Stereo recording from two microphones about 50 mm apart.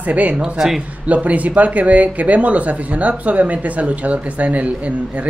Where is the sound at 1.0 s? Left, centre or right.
Right.